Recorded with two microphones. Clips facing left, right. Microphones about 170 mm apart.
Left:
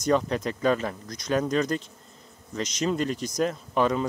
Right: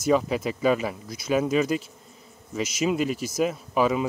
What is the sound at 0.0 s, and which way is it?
Speech, 5° right (ahead or behind).